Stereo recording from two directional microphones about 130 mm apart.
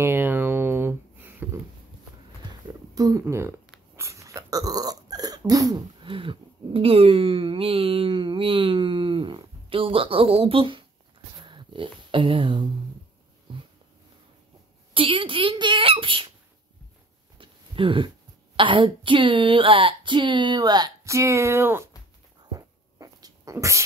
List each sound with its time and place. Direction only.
0.0 s a sound: 15° right (ahead or behind)
2.9 s speech: 30° right (ahead or behind)
3.9 s burping: 20° right (ahead or behind)
6.0 s speech: 40° right (ahead or behind)
11.3 s a sound: 40° right (ahead or behind)
15.0 s speech: 40° right (ahead or behind)
17.4 s a sound: 40° right (ahead or behind)
18.6 s speech: 40° right (ahead or behind); by 21.8 s 15° right (ahead or behind)
22.5 s dog: 30° right (ahead or behind)